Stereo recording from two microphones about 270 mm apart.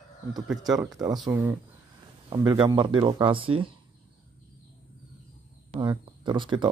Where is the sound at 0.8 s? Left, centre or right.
Centre.